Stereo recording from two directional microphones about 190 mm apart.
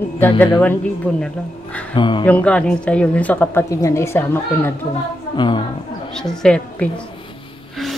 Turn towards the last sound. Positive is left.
turn(degrees=5)  # may be behind; listen again after turning